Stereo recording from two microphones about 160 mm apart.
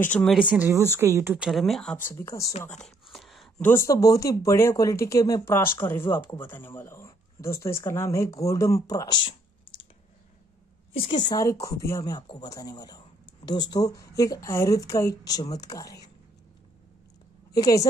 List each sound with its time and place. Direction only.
0.0 s speech: 10° left (ahead or behind)
0.3 s speech: 5° right (ahead or behind)
1.4 s speech: centre (ahead or behind); by 2.4 s 15° left (ahead or behind)
2.6 s a sound: 5° left (ahead or behind)
3.6 s speech: 20° left (ahead or behind)
10.9 s speech: 35° left (ahead or behind)
17.6 s speech: 20° left (ahead or behind)